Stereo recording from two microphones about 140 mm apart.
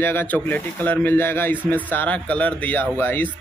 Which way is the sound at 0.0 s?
15° left (ahead or behind).